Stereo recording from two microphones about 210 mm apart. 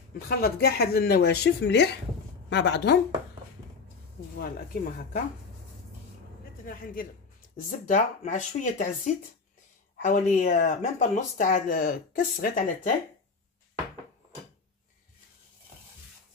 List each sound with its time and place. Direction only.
0.3 s a woman's voice: 45° left (ahead or behind)
4.4 s speech: 40° left (ahead or behind)
6.6 s speech: 45° left (ahead or behind)